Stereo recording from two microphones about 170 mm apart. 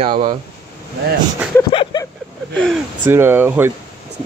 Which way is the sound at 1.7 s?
30° left (ahead or behind).